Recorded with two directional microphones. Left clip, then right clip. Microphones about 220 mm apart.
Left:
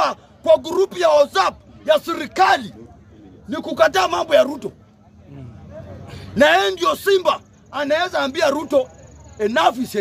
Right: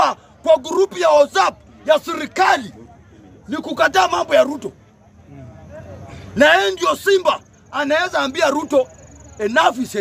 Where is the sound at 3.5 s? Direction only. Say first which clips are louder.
Left 1 dB; 5° right (ahead or behind).